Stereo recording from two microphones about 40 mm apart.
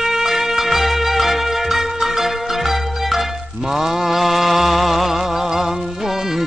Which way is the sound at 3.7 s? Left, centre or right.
Centre.